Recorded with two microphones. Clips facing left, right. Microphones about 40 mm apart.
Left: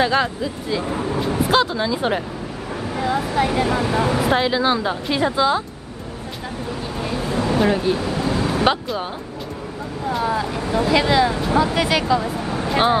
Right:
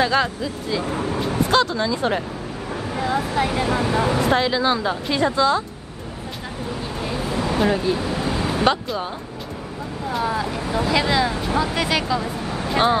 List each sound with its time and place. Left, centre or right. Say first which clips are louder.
0.0 s speech: left 1 dB; centre
0.9 s speech: left 1 dB; centre
1.5 s speech: left 1 dB; centre
2.9 s speech: left 1 dB; centre
7.0 s vehicle: left 2 dB; centre
8.0 s a sound: left 2 dB; centre
10.0 s speech: left 2 dB; centre